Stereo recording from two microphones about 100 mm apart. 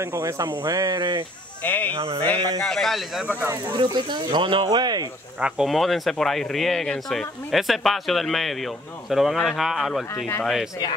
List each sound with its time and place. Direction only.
0.0 s speech: 30° right (ahead or behind); by 1.2 s 50° right (ahead or behind)
1.6 s speech: 15° left (ahead or behind)
2.0 s a sound: 75° right (ahead or behind)
2.6 s speech: 5° left (ahead or behind)
3.7 s speech: 50° right (ahead or behind)
5.4 s speech: 5° right (ahead or behind)